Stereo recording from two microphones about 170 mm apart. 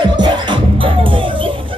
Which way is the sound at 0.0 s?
25° right (ahead or behind).